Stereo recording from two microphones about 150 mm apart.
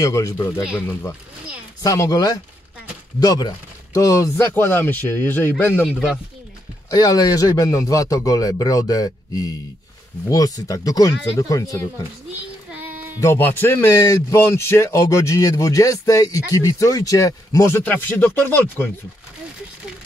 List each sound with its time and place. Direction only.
0.0 s speech: 25° left (ahead or behind)
1.8 s speech: 20° left (ahead or behind)
6.9 s speech: 25° left (ahead or behind)
13.2 s speech: 15° left (ahead or behind)